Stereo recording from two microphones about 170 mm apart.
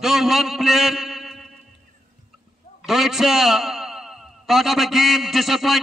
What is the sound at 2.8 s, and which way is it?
A man's voice, centre (ahead or behind).